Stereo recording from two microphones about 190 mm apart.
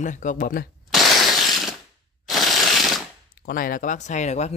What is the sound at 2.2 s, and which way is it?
Crushing, centre (ahead or behind).